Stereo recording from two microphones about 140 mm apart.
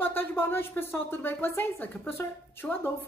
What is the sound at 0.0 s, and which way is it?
A woman's voice, 15° left (ahead or behind).